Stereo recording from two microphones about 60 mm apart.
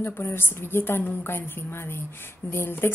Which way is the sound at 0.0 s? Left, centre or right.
Left.